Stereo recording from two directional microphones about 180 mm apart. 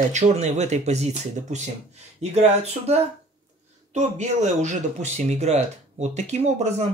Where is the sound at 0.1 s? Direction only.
40° right (ahead or behind).